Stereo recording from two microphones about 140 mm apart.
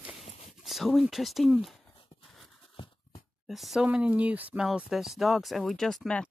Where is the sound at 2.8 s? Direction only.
40° left (ahead or behind).